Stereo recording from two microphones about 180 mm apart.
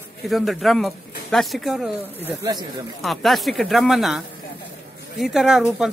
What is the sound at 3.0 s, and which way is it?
Speech, centre (ahead or behind).